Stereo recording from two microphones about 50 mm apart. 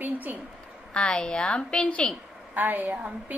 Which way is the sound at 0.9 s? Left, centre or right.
Centre.